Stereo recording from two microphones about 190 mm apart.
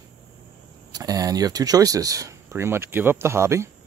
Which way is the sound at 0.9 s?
20° right (ahead or behind).